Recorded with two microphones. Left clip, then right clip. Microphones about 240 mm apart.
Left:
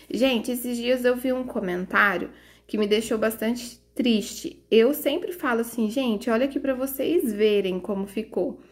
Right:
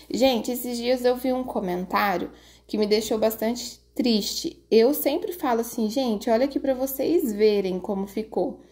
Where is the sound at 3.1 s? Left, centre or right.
Right.